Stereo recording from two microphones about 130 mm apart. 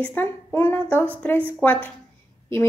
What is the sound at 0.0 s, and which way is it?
Speech, 15° left (ahead or behind).